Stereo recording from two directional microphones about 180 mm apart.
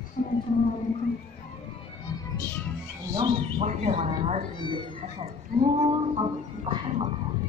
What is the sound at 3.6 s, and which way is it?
Speech, 40° right (ahead or behind).